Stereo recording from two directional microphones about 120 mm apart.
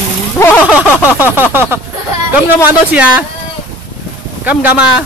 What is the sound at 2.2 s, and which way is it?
Speech, 15° right (ahead or behind).